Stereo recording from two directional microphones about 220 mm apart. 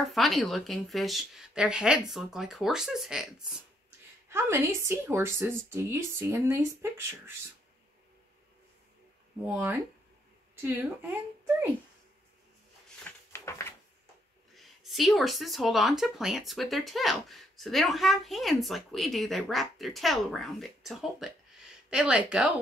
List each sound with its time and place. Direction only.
0.0 s speech: centre (ahead or behind)
4.3 s speech: 10° right (ahead or behind)
9.4 s speech: 10° right (ahead or behind)
13.3 s a sound: 10° left (ahead or behind)
14.5 s speech: centre (ahead or behind)